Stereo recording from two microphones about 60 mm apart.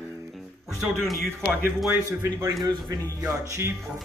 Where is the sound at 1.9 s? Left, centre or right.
Right.